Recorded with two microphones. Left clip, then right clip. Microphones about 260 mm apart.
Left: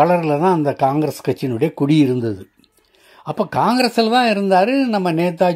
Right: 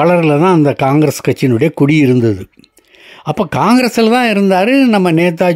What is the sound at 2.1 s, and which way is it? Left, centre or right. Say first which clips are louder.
Speech: right 8 dB; right.